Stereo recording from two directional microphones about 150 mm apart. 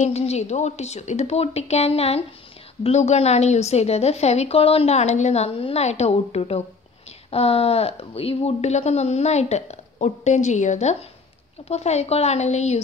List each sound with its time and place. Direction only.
0.0 s a woman's voice: 45° left (ahead or behind)